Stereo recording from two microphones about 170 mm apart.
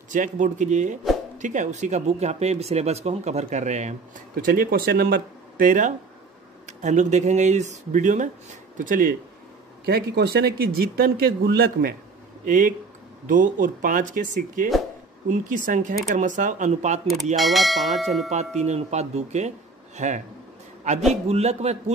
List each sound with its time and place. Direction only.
0.1 s speech: 50° right (ahead or behind)
4.4 s a man's voice: 60° right (ahead or behind)
9.8 s a man's voice: 70° right (ahead or behind); by 17.0 s 45° right (ahead or behind)
17.4 s speech: centre (ahead or behind)
18.6 s speech: 40° right (ahead or behind)